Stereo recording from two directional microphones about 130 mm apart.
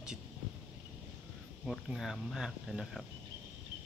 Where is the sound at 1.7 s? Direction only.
Centre (ahead or behind).